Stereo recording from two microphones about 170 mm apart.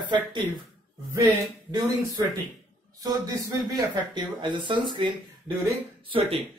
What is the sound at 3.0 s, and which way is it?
Speech, 20° right (ahead or behind).